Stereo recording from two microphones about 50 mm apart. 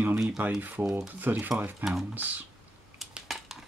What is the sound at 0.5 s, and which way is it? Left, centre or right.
Speech, right.